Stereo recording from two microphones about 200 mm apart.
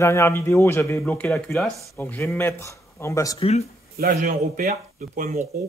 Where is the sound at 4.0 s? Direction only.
45° right (ahead or behind).